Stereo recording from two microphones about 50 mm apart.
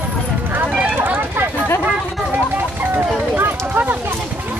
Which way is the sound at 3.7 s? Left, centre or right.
Right.